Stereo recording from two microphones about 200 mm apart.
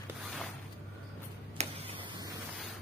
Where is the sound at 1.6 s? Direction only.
30° right (ahead or behind).